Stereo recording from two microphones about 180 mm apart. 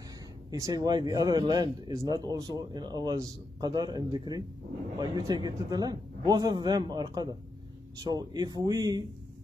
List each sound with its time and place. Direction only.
0.5 s speech: 20° right (ahead or behind)